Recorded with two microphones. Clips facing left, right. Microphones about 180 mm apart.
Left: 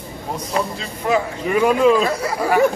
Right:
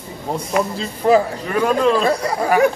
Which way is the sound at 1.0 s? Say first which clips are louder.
Right 5 dB; 35° right (ahead or behind).